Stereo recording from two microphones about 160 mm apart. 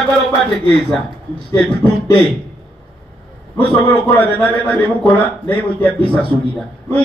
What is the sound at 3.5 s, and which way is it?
A man's voice, 10° left (ahead or behind).